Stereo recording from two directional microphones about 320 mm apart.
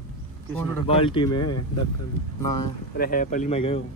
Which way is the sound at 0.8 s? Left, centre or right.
Centre.